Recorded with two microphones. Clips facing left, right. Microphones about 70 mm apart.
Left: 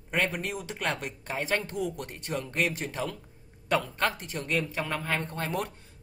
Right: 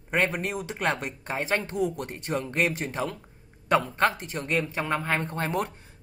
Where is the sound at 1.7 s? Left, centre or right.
Right.